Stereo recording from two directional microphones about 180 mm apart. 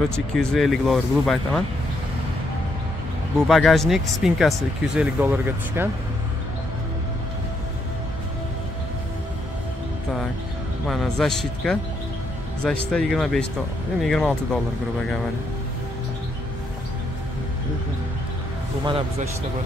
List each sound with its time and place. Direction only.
0.1 s speech: 5° left (ahead or behind)
3.4 s speech: centre (ahead or behind)
10.9 s speech: centre (ahead or behind)
18.9 s speech: 30° right (ahead or behind)